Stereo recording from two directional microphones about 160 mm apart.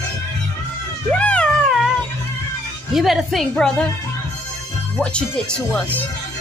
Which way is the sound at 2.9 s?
Centre (ahead or behind).